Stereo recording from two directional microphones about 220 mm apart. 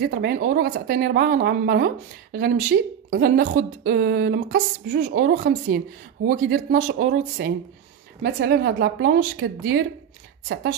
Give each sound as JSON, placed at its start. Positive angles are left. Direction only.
{"t": 0.0, "sound": "a woman's voice", "side_deg": -45}